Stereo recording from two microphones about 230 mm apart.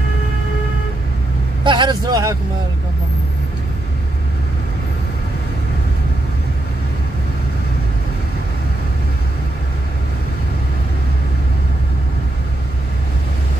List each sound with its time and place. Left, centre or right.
1.6 s speech: centre